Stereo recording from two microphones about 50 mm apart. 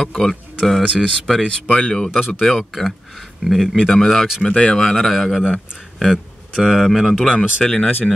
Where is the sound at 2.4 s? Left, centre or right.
Centre.